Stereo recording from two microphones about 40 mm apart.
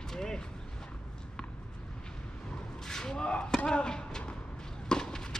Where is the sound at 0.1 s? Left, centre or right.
Centre.